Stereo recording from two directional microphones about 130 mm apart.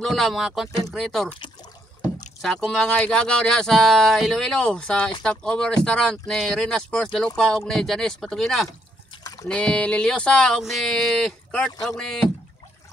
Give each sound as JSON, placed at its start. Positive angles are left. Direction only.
{"t": 0.0, "sound": "speech", "side_deg": 0}
{"t": 2.4, "sound": "speech", "side_deg": 5}